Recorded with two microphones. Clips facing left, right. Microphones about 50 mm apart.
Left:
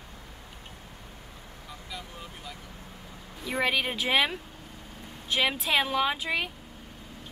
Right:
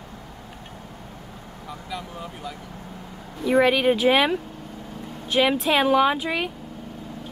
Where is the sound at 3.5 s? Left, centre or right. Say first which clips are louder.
Right 10 dB; centre.